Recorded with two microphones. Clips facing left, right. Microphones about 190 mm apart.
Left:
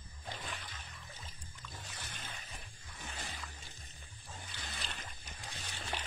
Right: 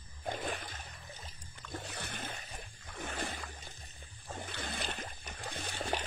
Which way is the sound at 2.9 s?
60° right (ahead or behind).